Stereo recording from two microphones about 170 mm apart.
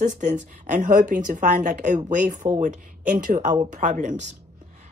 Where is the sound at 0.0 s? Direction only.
50° right (ahead or behind).